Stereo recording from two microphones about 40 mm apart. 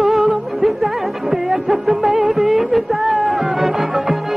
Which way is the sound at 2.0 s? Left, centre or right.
Right.